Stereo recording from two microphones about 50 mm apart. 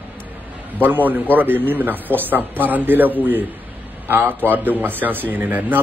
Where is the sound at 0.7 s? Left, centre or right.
Right.